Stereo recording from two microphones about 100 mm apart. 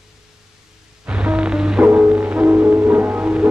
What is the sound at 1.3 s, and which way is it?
Music, 10° right (ahead or behind).